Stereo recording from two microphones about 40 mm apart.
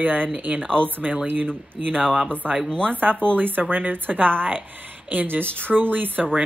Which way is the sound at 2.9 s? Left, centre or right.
Right.